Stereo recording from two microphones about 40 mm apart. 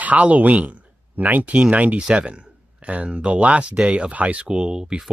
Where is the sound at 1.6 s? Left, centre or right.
Right.